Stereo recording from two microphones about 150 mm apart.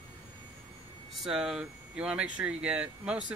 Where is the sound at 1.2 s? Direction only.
5° right (ahead or behind).